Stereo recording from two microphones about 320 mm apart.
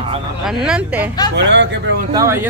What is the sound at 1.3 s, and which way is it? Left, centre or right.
Speech, right.